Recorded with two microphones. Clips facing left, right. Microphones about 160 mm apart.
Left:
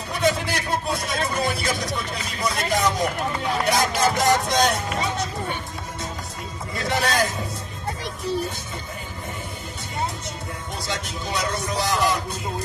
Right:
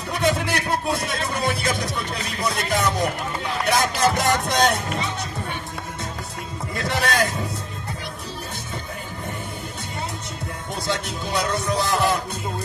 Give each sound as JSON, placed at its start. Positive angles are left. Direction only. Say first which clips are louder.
{"t": 0.2, "sound": "a sound", "louder": "even", "side_deg": -60}
{"t": 2.4, "sound": "speech", "louder": "left 1 dB", "side_deg": -55}
{"t": 6.8, "sound": "speech", "louder": "even", "side_deg": -60}
{"t": 10.9, "sound": "speech", "louder": "right 3 dB", "side_deg": -60}